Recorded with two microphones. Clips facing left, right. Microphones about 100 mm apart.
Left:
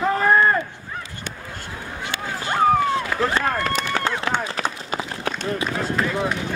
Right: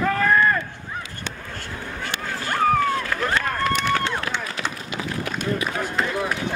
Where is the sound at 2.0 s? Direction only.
20° left (ahead or behind).